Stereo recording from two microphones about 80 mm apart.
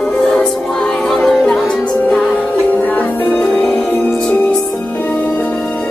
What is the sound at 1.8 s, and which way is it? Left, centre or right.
Music, centre.